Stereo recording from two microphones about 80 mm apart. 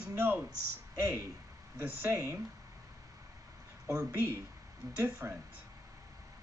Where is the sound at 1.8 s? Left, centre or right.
Right.